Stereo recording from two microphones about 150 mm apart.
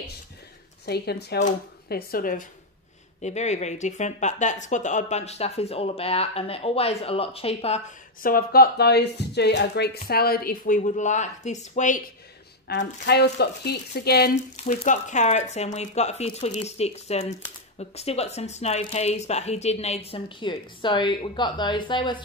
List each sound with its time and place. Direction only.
0.8 s speech: 90° left; by 2.4 s 70° left (ahead or behind)
3.2 s speech: 50° left (ahead or behind)
8.2 s speech: 75° left (ahead or behind); by 12.0 s 55° left (ahead or behind)
12.6 s speech: 90° left
14.6 s speech: 50° left (ahead or behind); by 22.2 s 30° left (ahead or behind)